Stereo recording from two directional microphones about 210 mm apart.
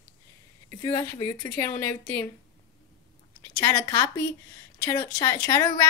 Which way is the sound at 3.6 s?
20° left (ahead or behind).